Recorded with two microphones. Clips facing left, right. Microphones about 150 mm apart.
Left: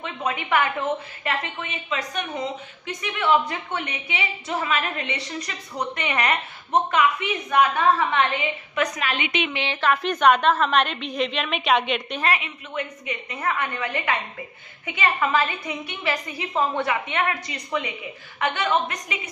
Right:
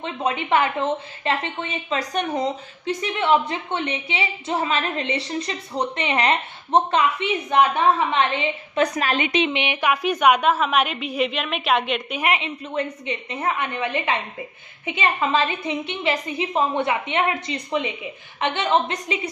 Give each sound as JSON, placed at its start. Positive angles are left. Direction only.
{"t": 0.0, "sound": "a woman's voice", "side_deg": -30}
{"t": 9.5, "sound": "a woman's voice", "side_deg": -20}
{"t": 12.2, "sound": "a woman's voice", "side_deg": -25}